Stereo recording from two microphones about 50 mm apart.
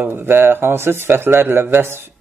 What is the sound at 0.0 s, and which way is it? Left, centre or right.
A man's voice, right.